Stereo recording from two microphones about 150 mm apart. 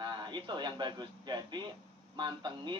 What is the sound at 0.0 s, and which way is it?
A man's voice, 30° right (ahead or behind).